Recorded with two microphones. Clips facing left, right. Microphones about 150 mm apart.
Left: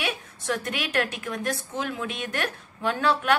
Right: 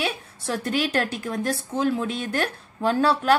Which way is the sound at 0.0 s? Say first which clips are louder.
Right 3 dB; 30° right (ahead or behind).